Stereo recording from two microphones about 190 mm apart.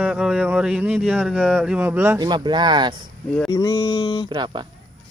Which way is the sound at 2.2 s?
25° right (ahead or behind).